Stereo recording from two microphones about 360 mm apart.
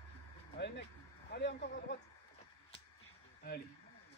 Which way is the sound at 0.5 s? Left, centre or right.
Left.